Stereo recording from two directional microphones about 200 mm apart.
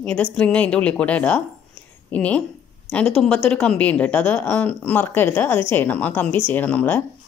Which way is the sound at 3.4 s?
5° left (ahead or behind).